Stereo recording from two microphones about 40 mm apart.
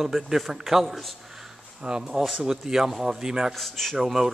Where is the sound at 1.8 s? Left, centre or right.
Centre.